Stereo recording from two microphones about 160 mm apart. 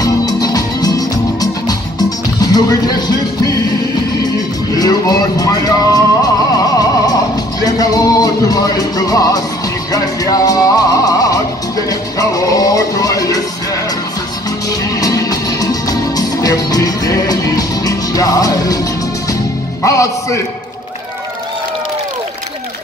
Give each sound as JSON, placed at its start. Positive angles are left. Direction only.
{"t": 0.0, "sound": "music", "side_deg": 25}
{"t": 4.7, "sound": "music", "side_deg": 25}
{"t": 15.0, "sound": "music", "side_deg": 20}
{"t": 19.8, "sound": "speech", "side_deg": 20}